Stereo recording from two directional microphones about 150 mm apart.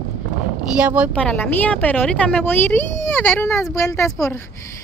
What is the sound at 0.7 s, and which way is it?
Speech, 10° right (ahead or behind).